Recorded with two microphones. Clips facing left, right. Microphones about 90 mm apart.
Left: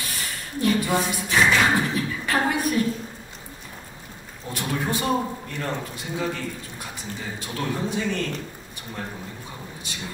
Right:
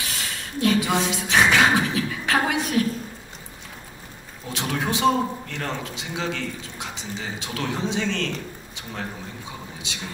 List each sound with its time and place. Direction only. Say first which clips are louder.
0.0 s a sound: right 1 dB; 90° right
1.8 s beatboxing: right 1 dB; 90° right
4.5 s a man's voice: right 1 dB; 90° right
9.9 s speech: right 1 dB; 90° right